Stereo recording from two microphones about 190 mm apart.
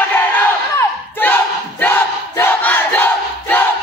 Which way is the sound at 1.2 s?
10° left (ahead or behind).